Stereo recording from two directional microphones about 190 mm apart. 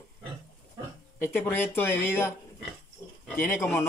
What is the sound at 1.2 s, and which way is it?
Speech, 10° left (ahead or behind).